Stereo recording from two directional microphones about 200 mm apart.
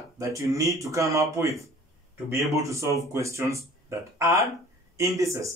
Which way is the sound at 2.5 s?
15° right (ahead or behind).